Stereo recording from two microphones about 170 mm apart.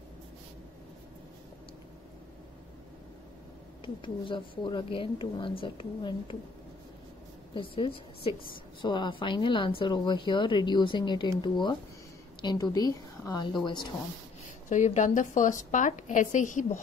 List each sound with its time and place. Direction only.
3.8 s a woman's voice: 30° left (ahead or behind)
7.5 s a woman's voice: 30° left (ahead or behind)
14.7 s a woman's voice: 45° left (ahead or behind)